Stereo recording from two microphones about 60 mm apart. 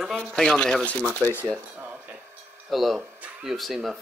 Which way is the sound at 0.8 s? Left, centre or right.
Left.